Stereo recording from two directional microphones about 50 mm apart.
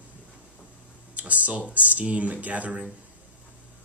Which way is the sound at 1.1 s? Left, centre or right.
Right.